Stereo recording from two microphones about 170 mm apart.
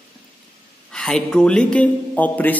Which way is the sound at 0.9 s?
5° left (ahead or behind).